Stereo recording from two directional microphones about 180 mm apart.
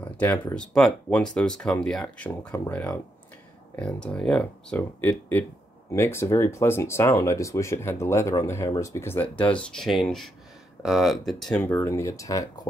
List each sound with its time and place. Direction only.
0.0 s speech: 10° left (ahead or behind)
11.5 s speech: 10° left (ahead or behind)